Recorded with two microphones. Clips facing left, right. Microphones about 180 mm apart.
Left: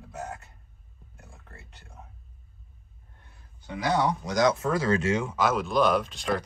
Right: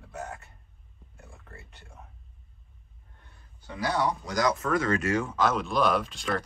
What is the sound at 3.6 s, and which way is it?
Speech, 20° left (ahead or behind).